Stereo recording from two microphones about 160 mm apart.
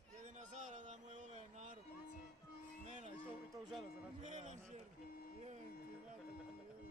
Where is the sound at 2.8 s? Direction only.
45° right (ahead or behind).